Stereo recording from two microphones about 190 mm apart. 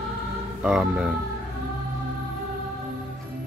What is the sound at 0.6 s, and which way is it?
Music, 5° right (ahead or behind).